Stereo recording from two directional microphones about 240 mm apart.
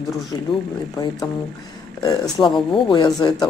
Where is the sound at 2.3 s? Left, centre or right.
Centre.